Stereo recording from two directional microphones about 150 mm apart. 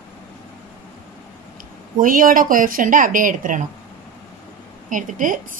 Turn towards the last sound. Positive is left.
turn(degrees=-60)  # may be behind; listen again after turning